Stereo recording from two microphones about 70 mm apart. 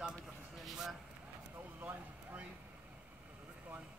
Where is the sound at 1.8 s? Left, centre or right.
Right.